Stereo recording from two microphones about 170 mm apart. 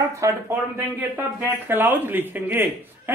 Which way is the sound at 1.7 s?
10° right (ahead or behind).